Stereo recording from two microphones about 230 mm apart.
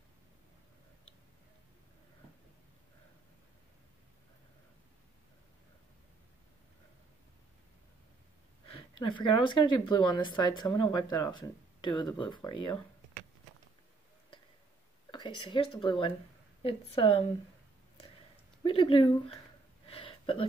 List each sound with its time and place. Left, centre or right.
9.0 s speech: left
15.0 s speech: left
18.6 s speech: left
19.9 s a sound: left